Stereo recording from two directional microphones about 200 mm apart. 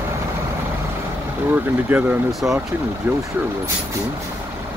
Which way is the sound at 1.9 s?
10° right (ahead or behind).